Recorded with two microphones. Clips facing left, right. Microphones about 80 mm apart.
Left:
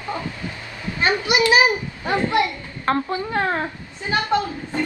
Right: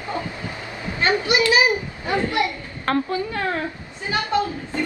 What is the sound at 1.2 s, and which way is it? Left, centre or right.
A woman's voice, left.